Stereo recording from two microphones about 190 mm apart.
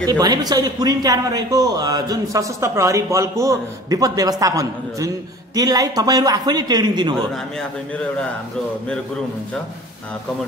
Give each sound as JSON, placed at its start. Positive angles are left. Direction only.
{"t": 0.0, "sound": "speech", "side_deg": -20}